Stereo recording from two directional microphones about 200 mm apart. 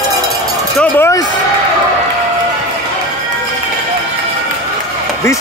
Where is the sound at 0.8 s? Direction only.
15° left (ahead or behind).